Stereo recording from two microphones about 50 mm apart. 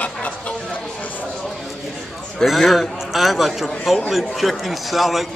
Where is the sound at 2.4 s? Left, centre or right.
Centre.